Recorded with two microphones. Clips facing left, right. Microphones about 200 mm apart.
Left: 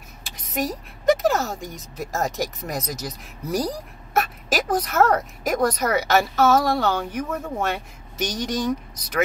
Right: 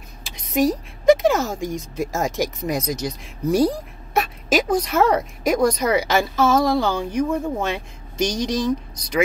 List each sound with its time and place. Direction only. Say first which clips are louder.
0.2 s speech: right 7 dB; centre (ahead or behind)
7.2 s speech: right 5 dB; 10° right (ahead or behind)
8.2 s speech: right 4 dB; 5° left (ahead or behind)